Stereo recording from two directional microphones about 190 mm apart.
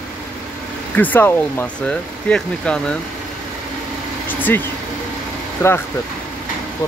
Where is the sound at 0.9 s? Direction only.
10° left (ahead or behind).